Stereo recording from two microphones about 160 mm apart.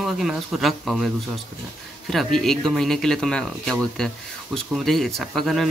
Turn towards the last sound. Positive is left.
turn(degrees=0)  # may be behind; listen again after turning